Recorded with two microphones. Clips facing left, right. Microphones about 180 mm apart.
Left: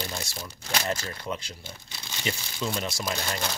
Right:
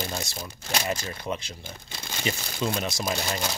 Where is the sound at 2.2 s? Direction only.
20° right (ahead or behind).